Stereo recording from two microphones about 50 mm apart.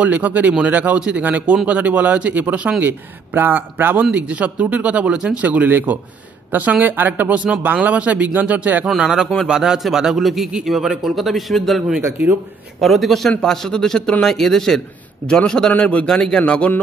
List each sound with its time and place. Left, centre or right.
0.0 s speech: right
0.9 s speech: right
2.8 s speech: right
4.0 s speech: right
5.4 s speech: right
8.8 s a man's voice: centre
12.8 s a man's voice: centre
13.4 s a man's voice: centre
15.8 s a man's voice: left
16.1 s a man's voice: centre